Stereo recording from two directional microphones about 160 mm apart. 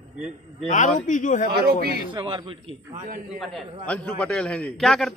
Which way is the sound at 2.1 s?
30° right (ahead or behind).